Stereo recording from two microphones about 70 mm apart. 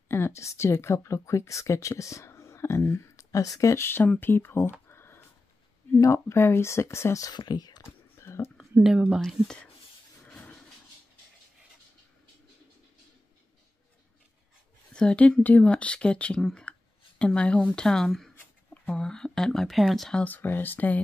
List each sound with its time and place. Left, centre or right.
0.1 s speech: left
3.9 s speech: left
4.8 s a sound: left
5.9 s speech: left
7.2 s speech: left
8.2 s a sound: left
8.8 s speech: centre
10.2 s a sound: centre
14.9 s a woman's voice: centre
20.2 s speech: left